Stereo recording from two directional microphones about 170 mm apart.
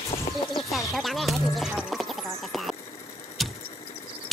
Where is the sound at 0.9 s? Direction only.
Centre (ahead or behind).